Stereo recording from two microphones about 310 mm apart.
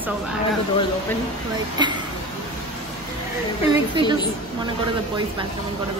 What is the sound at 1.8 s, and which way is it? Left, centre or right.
Speech, centre.